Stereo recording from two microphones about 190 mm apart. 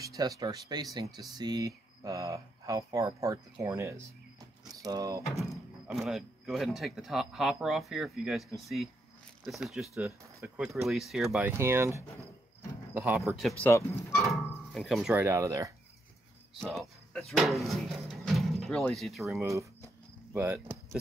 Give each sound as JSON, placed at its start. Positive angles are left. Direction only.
{"t": 0.0, "sound": "speech", "side_deg": -20}
{"t": 5.5, "sound": "speech", "side_deg": 0}
{"t": 11.4, "sound": "speech", "side_deg": -15}
{"t": 13.4, "sound": "speech", "side_deg": 0}
{"t": 13.7, "sound": "speech", "side_deg": 10}
{"t": 14.2, "sound": "a sound", "side_deg": 0}
{"t": 14.9, "sound": "speech", "side_deg": 0}
{"t": 15.2, "sound": "speech", "side_deg": -15}
{"t": 16.7, "sound": "speech", "side_deg": 0}
{"t": 20.3, "sound": "speech", "side_deg": -10}